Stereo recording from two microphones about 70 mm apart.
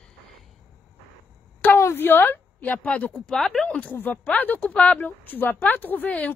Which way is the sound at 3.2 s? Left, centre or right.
Centre.